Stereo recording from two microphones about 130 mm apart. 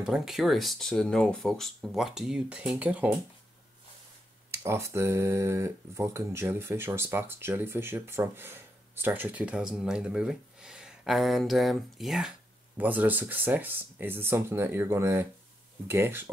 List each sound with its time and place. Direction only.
0.0 s speech: 5° right (ahead or behind)
4.5 s speech: 20° right (ahead or behind)